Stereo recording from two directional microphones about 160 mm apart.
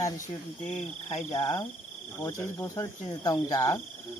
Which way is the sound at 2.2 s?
15° left (ahead or behind).